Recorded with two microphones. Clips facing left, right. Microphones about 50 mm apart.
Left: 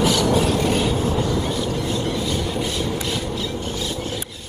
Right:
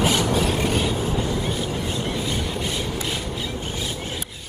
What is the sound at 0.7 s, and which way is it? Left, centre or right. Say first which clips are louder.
Train: left 3 dB; centre.